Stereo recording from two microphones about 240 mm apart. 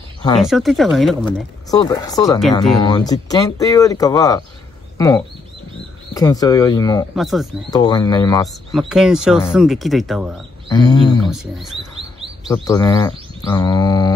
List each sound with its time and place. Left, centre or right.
0.4 s speech: centre
1.3 s speech: centre
7.2 s speech: centre
7.7 s speech: centre
8.7 s speech: centre
10.7 s speech: centre
11.3 s speech: centre
12.6 s speech: centre